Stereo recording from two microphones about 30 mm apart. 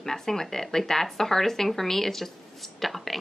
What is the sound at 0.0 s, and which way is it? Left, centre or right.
A woman's voice, centre.